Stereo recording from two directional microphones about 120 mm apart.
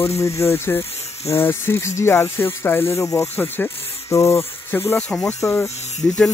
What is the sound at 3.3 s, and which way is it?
Mechanisms, 20° left (ahead or behind).